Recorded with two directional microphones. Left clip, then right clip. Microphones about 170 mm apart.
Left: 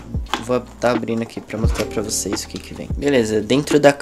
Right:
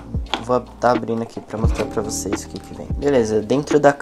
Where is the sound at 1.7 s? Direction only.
20° left (ahead or behind).